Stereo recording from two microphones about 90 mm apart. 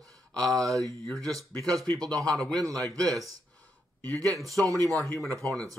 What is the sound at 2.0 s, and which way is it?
Speech, 45° right (ahead or behind).